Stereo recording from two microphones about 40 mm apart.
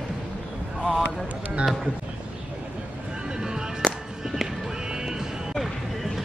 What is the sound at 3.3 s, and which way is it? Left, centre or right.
Music, centre.